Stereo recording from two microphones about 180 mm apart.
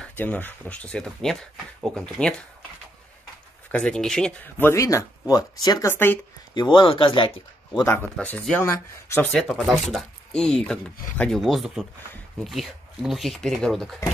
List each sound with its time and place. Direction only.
0.0 s speech: 10° left (ahead or behind)
3.7 s speech: 5° left (ahead or behind)
6.5 s speech: 25° left (ahead or behind)
7.9 s speech: 5° left (ahead or behind)